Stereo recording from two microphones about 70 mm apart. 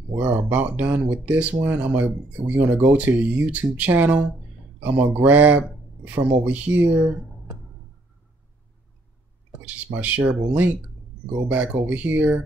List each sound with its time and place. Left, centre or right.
0.5 s speech: right
9.7 s speech: right